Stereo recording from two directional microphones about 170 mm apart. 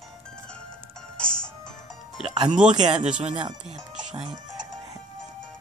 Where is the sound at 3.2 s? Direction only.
30° right (ahead or behind).